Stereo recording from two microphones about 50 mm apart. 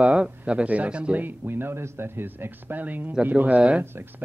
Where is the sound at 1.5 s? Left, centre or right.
Right.